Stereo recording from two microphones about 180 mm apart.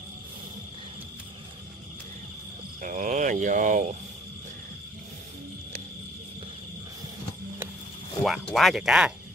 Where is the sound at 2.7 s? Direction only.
45° right (ahead or behind).